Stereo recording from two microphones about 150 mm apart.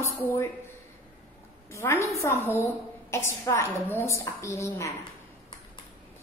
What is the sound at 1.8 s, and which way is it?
A woman's voice, 20° left (ahead or behind).